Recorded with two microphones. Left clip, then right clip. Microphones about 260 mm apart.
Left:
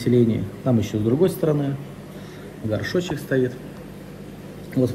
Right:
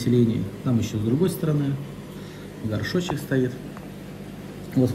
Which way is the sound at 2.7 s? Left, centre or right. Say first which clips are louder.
Left 3 dB; centre.